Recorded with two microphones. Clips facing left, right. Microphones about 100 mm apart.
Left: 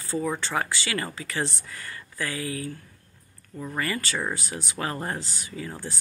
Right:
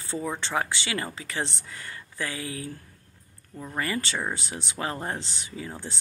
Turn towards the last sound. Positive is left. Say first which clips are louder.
# left 1 dB
turn(degrees=-20)  # may be behind; listen again after turning